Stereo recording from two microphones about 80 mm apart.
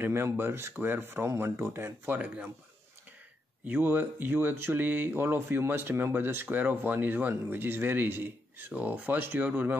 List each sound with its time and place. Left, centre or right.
0.0 s speech: right
2.1 s speech: centre
3.6 s speech: right